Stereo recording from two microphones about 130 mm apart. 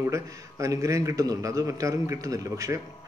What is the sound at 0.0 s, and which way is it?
Speech, 25° right (ahead or behind).